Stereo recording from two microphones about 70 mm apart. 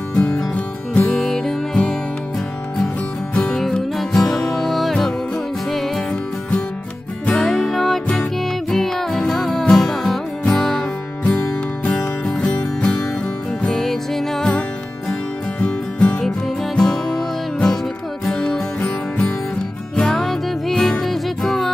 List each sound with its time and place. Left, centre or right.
0.1 s music: centre
1.1 s music: centre
3.3 s music: centre
7.3 s music: centre
12.3 s music: centre
15.6 s music: centre